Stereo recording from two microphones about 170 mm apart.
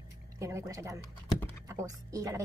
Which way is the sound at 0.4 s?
15° right (ahead or behind).